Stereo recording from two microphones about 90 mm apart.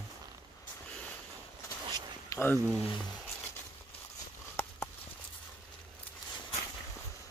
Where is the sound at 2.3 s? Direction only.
40° left (ahead or behind).